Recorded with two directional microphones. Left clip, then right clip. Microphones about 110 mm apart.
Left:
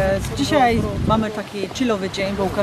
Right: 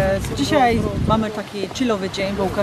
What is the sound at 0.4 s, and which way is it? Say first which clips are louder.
Speech: even; centre (ahead or behind).